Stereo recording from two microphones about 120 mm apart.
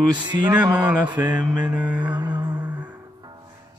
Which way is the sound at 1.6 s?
10° right (ahead or behind).